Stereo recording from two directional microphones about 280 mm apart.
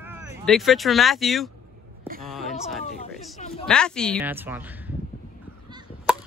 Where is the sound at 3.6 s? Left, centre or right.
Centre.